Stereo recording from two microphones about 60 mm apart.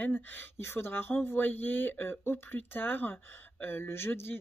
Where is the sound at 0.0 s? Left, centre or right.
Left.